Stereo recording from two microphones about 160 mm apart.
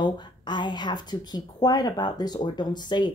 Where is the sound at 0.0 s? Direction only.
30° left (ahead or behind).